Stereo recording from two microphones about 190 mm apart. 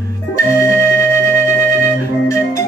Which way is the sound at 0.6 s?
15° left (ahead or behind).